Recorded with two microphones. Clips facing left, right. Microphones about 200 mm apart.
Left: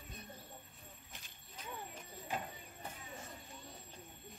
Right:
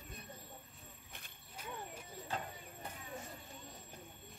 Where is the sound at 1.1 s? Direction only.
55° right (ahead or behind).